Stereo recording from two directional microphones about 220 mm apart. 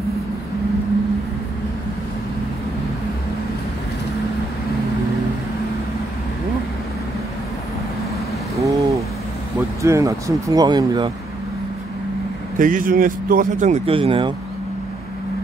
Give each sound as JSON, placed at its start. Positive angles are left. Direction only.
{"t": 8.5, "sound": "a sound", "side_deg": -15}
{"t": 9.8, "sound": "speech", "side_deg": -15}
{"t": 12.5, "sound": "speech", "side_deg": -35}